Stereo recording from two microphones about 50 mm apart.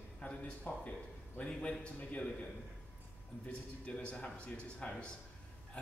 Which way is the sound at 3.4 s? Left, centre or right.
Left.